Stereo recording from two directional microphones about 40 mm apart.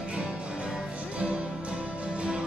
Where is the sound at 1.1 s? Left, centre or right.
Right.